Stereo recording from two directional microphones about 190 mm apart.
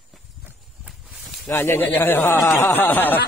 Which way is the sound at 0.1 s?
5° right (ahead or behind).